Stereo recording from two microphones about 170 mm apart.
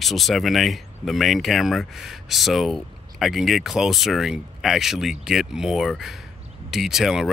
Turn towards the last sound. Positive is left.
turn(degrees=0)  # may be behind; listen again after turning